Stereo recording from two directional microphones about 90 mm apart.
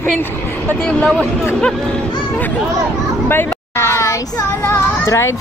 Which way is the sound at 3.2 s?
25° left (ahead or behind).